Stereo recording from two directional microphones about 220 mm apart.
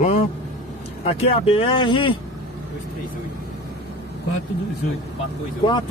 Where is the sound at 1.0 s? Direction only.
25° left (ahead or behind).